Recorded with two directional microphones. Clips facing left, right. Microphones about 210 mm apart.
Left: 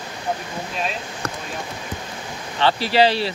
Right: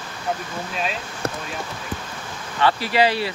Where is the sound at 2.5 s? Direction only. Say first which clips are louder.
Left 2 dB; 30° left (ahead or behind).